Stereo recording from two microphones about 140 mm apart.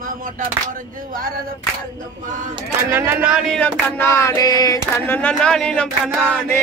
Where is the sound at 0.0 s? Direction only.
80° right.